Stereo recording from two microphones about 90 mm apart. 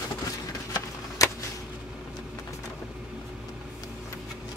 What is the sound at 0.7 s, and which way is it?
Shuffling cards, 40° left (ahead or behind).